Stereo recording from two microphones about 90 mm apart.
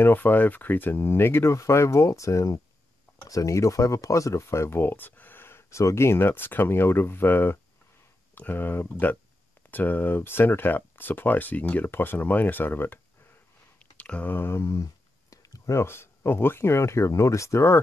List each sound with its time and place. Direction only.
0.0 s speech: 20° left (ahead or behind)